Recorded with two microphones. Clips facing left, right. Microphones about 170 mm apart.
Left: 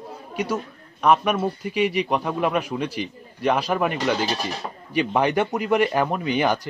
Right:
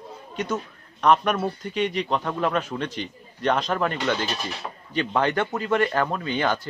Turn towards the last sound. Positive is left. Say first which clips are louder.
# left 3 dB
turn(degrees=15)  # may be behind; listen again after turning